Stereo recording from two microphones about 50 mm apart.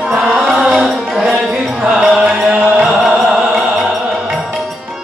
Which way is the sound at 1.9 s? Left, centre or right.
Centre.